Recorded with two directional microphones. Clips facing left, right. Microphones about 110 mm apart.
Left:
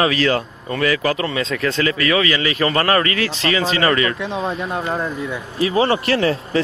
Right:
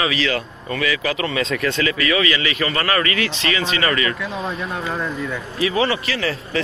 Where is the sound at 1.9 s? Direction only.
35° left (ahead or behind).